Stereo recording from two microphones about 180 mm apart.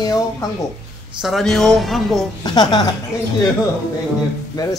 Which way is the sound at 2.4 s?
25° left (ahead or behind).